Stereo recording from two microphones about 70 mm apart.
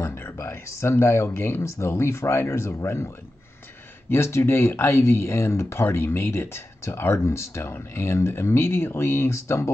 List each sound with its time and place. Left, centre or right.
0.0 s a sound: left
0.7 s speech: left
4.1 s speech: left